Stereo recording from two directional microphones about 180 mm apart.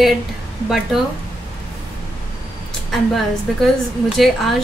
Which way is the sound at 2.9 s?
Centre (ahead or behind).